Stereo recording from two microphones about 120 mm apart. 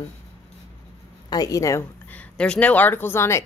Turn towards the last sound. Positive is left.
turn(degrees=20)  # may be behind; listen again after turning